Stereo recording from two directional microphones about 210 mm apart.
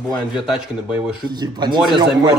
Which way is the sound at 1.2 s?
20° right (ahead or behind).